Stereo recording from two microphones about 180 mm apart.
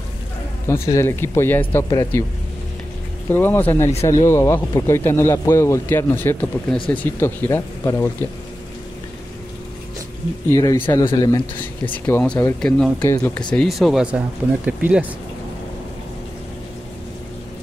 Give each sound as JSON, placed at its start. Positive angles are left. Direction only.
{"t": 0.9, "sound": "speech", "side_deg": 15}
{"t": 3.3, "sound": "speech", "side_deg": 10}
{"t": 10.5, "sound": "speech", "side_deg": 20}
{"t": 12.2, "sound": "speech", "side_deg": 10}